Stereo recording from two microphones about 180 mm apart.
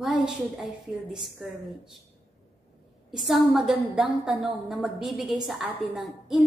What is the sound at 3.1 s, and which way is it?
A woman's voice, centre (ahead or behind).